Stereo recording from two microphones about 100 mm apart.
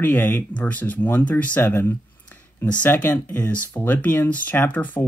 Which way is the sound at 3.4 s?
15° left (ahead or behind).